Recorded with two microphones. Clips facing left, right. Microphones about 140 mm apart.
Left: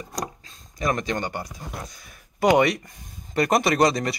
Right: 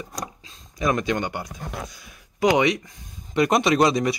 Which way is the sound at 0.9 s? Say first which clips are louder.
Right 3 dB; 35° left (ahead or behind).